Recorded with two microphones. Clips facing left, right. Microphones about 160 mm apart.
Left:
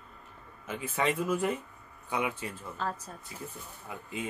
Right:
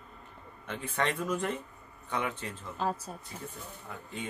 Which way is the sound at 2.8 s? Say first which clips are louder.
Right 3 dB; 15° right (ahead or behind).